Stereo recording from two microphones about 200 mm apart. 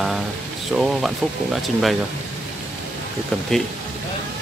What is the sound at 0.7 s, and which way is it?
Speech, centre (ahead or behind).